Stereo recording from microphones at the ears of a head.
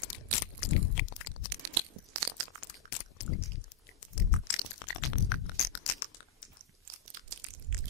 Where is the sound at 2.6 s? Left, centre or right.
Left.